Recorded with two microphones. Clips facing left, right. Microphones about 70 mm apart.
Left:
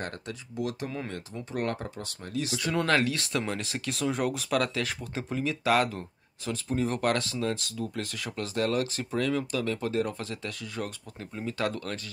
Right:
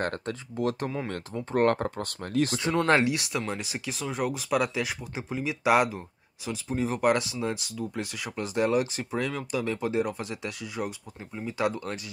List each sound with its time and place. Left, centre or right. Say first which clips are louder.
0.0 s speech: right 6 dB; right
2.9 s speech: right 4 dB; centre
3.3 s speech: even; centre